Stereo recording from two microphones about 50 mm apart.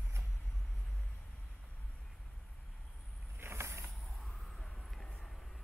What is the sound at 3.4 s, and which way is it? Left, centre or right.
Vehicle, right.